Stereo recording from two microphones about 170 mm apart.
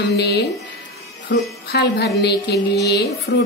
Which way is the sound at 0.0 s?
75° left (ahead or behind).